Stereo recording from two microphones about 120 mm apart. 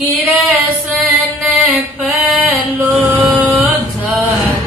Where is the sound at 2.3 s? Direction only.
15° right (ahead or behind).